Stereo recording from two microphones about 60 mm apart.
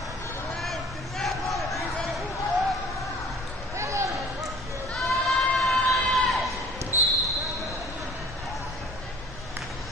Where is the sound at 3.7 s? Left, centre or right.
Right.